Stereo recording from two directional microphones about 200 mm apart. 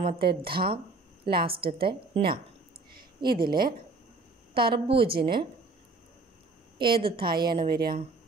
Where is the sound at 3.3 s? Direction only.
50° right (ahead or behind).